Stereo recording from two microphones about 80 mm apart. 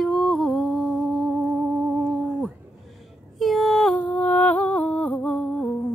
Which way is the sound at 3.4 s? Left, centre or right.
Centre.